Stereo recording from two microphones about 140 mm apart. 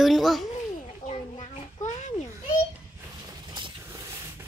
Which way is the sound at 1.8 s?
55° left (ahead or behind).